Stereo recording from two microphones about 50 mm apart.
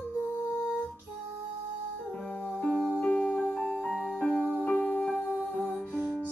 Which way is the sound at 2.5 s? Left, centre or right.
Left.